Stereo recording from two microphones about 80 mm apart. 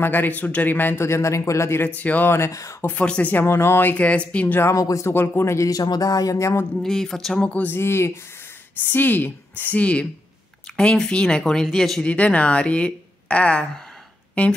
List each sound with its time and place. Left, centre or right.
0.0 s a man's voice: left
2.3 s speech: left
2.8 s a man's voice: centre
3.4 s speech: left
3.9 s a woman's voice: centre
4.7 s speech: left
5.1 s speech: left
5.7 s speech: left
6.3 s speech: left
6.8 s speech: centre
7.4 s a woman's voice: centre
7.7 s a man's voice: left; by 12.1 s centre
12.1 s a woman's voice: centre